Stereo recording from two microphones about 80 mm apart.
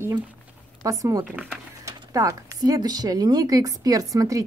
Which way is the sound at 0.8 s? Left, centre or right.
Right.